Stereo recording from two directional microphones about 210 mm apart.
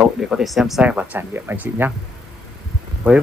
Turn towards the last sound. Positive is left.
turn(degrees=-5)  # may be behind; listen again after turning